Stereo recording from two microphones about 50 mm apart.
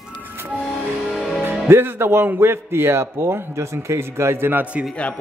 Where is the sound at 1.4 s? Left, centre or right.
Right.